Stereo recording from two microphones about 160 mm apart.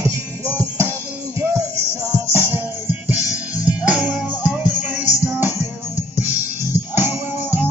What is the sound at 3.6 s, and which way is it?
Music, 10° right (ahead or behind).